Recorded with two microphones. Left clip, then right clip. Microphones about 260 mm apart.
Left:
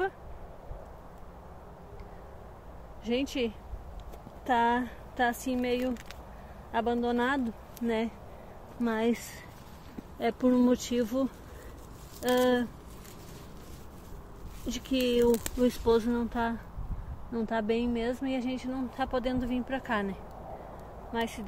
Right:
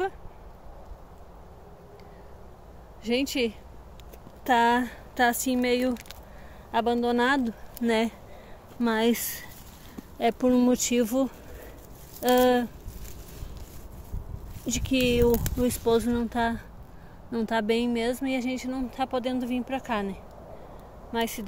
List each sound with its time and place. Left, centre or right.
3.0 s speech: right
10.1 s speech: centre
14.7 s speech: centre
17.3 s speech: right